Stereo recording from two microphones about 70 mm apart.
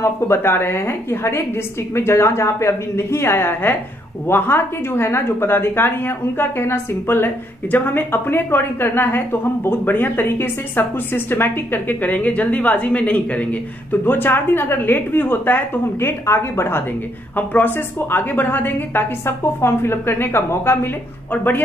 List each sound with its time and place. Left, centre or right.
0.0 s a woman's voice: left
17.4 s a woman's voice: left